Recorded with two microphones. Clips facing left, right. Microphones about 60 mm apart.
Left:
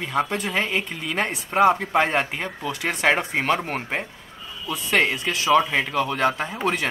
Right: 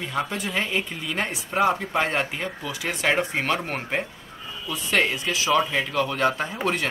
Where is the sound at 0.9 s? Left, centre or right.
Centre.